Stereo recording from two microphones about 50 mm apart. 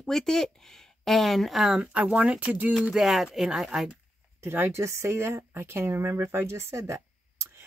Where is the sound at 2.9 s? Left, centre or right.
Centre.